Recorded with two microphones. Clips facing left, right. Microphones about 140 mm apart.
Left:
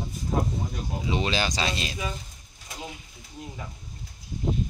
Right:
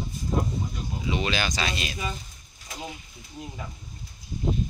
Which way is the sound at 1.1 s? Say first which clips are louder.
Left 1 dB; 30° left (ahead or behind).